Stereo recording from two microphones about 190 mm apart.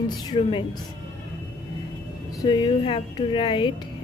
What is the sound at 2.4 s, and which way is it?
Speech, 25° left (ahead or behind).